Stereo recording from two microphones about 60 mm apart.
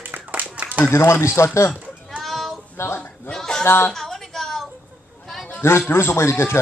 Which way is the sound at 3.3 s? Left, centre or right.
Centre.